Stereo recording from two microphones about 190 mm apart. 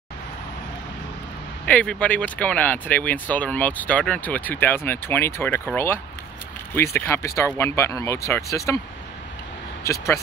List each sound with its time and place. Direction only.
1.7 s speech: 5° left (ahead or behind)
6.7 s speech: 10° left (ahead or behind)
9.8 s speech: 15° left (ahead or behind)